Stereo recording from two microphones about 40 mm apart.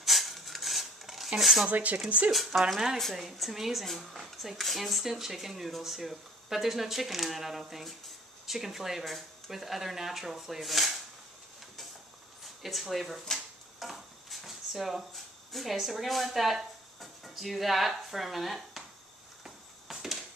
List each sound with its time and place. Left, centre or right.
0.0 s dishes: centre
1.7 s speech: right
2.3 s speech: centre
12.6 s speech: centre
13.7 s dishes: centre
15.7 s speech: centre
19.4 s walk: centre